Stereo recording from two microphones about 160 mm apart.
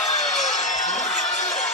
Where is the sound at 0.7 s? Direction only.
45° left (ahead or behind).